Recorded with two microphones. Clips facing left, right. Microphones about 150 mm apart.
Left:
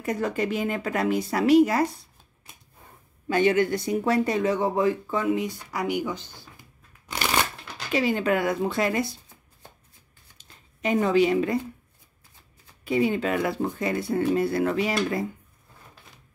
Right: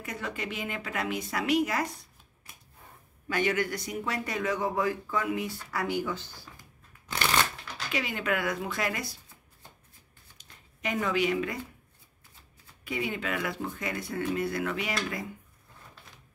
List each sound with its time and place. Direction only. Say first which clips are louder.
0.0 s speech: left 10 dB; 40° left (ahead or behind)
3.3 s speech: left 7 dB; 25° left (ahead or behind)
7.1 s shuffling cards: left 2 dB; 15° left (ahead or behind)
7.9 s speech: left 8 dB; 30° left (ahead or behind)
10.3 s a sound: left 2 dB; 30° left (ahead or behind)
12.8 s speech: left 9 dB; 30° left (ahead or behind)